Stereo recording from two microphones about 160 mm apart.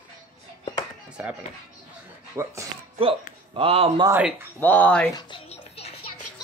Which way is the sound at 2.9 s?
35° right (ahead or behind).